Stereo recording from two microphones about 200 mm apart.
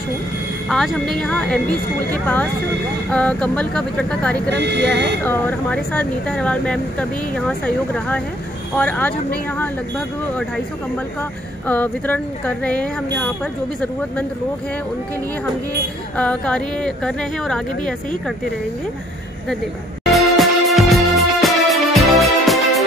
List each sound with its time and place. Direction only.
0.7 s speech: centre (ahead or behind)
4.5 s speech: 55° right (ahead or behind)
5.2 s speech: 10° left (ahead or behind)
11.6 s speech: 10° left (ahead or behind)
16.2 s speech: 5° left (ahead or behind)
20.1 s music: centre (ahead or behind)